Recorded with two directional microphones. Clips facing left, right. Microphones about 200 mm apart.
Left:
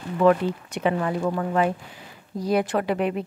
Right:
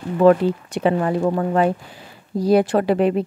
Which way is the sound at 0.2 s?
35° right (ahead or behind).